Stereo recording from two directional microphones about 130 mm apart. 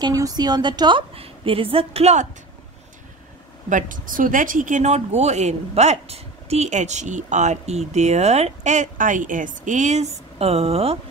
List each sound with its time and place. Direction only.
0.0 s a woman's voice: 30° right (ahead or behind); by 2.2 s 55° right (ahead or behind)
3.6 s speech: 85° right; by 11.0 s 50° right (ahead or behind)